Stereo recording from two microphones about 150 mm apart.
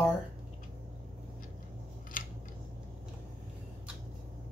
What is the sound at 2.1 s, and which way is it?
Scissors, 65° left (ahead or behind).